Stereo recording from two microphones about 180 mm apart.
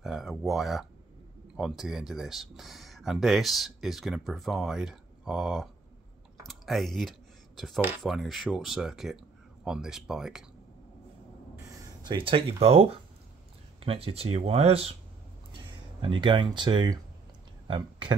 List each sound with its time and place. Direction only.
0.0 s speech: centre (ahead or behind)
6.4 s computer keyboard: centre (ahead or behind)
8.0 s speech: centre (ahead or behind)
12.1 s speech: 30° right (ahead or behind)